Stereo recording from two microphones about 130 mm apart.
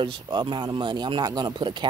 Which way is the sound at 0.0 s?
35° right (ahead or behind).